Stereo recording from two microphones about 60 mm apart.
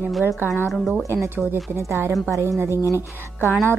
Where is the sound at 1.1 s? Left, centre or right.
Right.